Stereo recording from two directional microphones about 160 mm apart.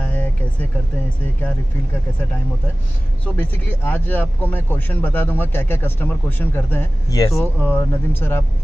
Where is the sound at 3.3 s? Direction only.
10° left (ahead or behind).